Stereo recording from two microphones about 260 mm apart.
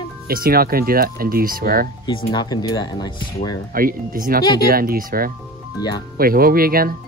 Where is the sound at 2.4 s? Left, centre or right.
Centre.